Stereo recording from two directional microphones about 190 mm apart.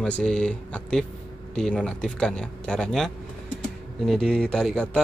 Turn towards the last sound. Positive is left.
turn(degrees=5)  # may be behind; listen again after turning